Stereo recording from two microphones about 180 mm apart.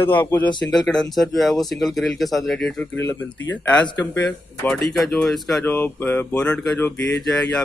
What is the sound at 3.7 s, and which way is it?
Speech, 10° left (ahead or behind).